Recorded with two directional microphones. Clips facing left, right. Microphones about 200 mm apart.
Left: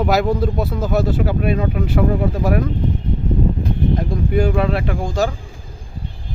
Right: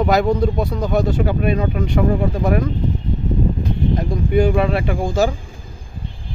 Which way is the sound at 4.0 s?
Centre (ahead or behind).